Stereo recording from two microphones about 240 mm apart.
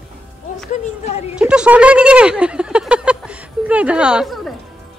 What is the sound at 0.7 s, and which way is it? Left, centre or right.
Speech, left.